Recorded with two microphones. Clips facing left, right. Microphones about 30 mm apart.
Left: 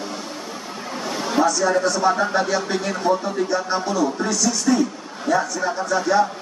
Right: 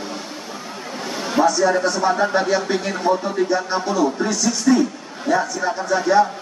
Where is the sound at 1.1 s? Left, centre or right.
Centre.